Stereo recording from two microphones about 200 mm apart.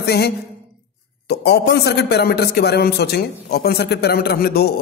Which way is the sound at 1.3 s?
55° left (ahead or behind).